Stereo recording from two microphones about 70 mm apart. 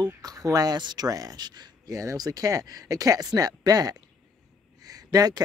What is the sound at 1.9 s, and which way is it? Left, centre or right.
Speech, right.